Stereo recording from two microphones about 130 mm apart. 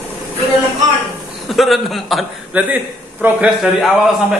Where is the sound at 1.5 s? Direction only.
Centre (ahead or behind).